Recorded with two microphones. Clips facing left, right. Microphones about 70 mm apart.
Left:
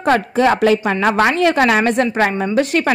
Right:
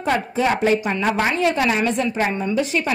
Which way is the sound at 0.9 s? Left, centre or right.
Left.